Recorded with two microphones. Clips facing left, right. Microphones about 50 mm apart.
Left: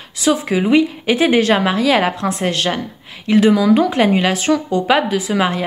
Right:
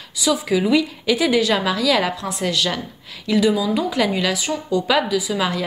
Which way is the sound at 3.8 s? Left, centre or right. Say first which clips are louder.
Left 6 dB; left.